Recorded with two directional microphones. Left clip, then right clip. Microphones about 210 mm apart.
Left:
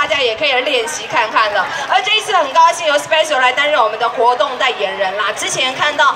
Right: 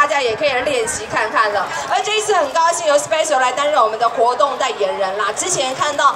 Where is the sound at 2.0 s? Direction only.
55° right (ahead or behind).